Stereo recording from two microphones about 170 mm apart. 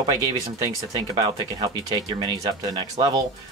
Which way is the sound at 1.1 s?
30° right (ahead or behind).